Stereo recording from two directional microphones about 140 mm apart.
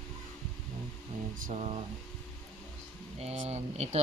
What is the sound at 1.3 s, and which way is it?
Speech, 60° right (ahead or behind).